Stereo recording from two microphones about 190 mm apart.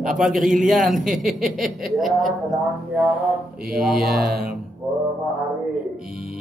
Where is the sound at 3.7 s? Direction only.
Centre (ahead or behind).